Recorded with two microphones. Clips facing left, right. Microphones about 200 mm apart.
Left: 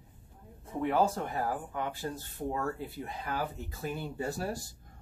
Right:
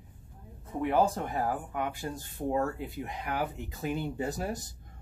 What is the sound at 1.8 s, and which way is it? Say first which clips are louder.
Speech: right 1 dB; 15° right (ahead or behind).